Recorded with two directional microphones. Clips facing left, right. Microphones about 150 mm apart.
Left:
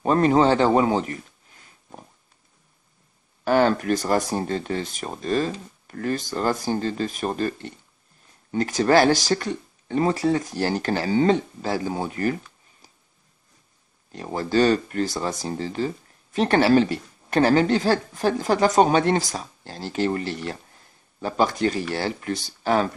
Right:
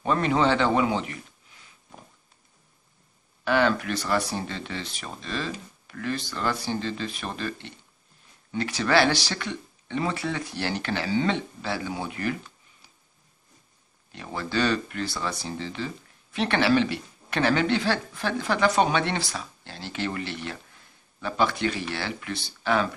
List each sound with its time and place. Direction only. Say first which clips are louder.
0.0 s speech: left 5 dB; 40° left (ahead or behind)
3.4 s speech: left 4 dB; 40° left (ahead or behind)
14.1 s speech: left 7 dB; 40° left (ahead or behind)